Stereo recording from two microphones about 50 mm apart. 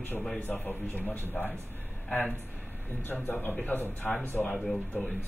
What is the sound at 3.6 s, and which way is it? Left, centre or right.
Speech, left.